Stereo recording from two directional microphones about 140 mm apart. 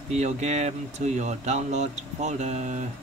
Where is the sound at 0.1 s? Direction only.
55° right (ahead or behind).